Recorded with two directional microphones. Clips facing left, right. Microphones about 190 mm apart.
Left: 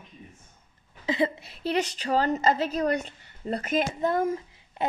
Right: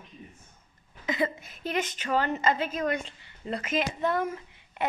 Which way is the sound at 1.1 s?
30° left (ahead or behind).